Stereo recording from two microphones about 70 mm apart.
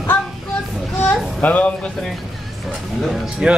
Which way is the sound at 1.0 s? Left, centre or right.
Left.